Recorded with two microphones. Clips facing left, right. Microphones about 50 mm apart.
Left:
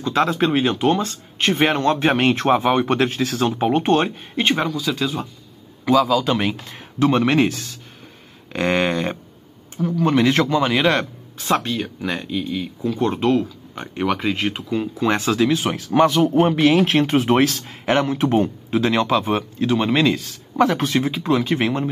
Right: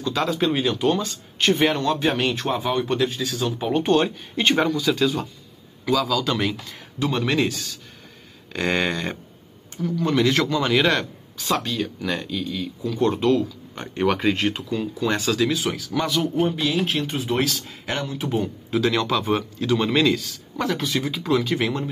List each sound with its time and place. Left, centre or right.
0.0 s speech: left
3.5 s speech: left
4.6 s speech: centre
5.9 s speech: left
6.5 s speech: left
13.7 s speech: centre
14.3 s speech: centre; by 16.2 s left
16.3 s speech: left
17.4 s speech: left
18.7 s speech: left